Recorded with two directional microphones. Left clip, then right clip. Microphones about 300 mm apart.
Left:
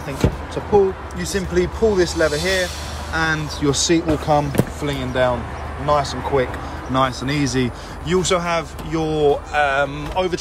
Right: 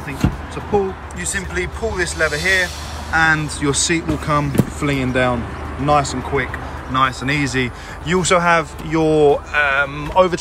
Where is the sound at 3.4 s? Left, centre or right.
Centre.